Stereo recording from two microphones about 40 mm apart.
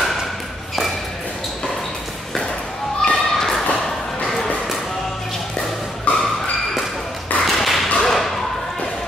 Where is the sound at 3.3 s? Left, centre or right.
Centre.